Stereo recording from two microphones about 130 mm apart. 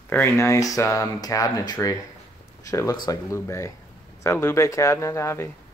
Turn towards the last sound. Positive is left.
turn(degrees=20)  # may be behind; listen again after turning